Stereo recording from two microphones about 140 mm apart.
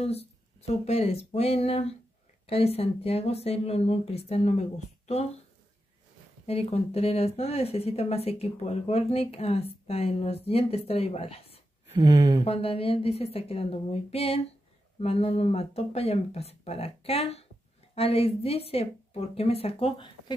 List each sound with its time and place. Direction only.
0.0 s speech: 45° left (ahead or behind)
6.4 s speech: 45° left (ahead or behind)
11.9 s speech: 35° right (ahead or behind)
12.4 s speech: 45° left (ahead or behind)